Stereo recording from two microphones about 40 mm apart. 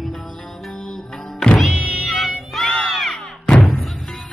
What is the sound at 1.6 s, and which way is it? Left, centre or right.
Music, centre.